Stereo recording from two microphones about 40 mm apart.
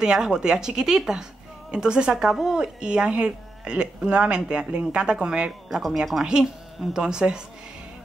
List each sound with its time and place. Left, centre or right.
0.0 s speech: centre